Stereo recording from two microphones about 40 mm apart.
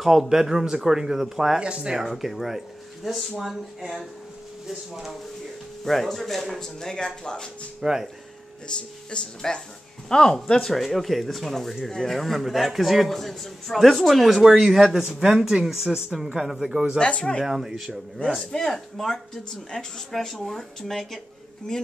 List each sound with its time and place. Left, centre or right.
0.0 s speech: centre
1.6 s speech: right; by 5.1 s centre
5.9 s speech: centre
7.8 s speech: centre
8.6 s a man's voice: left; by 14.4 s centre
14.4 s speech: centre
14.7 s a man's voice: centre
15.0 s speech: centre
18.5 s speech: centre
19.5 s speech: centre
20.1 s a man's voice: centre
21.7 s speech: centre